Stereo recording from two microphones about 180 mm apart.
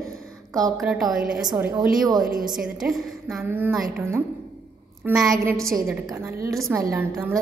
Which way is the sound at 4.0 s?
15° right (ahead or behind).